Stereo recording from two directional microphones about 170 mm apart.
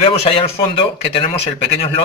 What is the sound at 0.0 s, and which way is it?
A man's voice, 35° left (ahead or behind).